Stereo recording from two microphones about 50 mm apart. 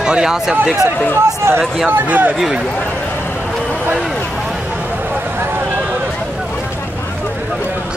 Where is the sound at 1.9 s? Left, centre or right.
Right.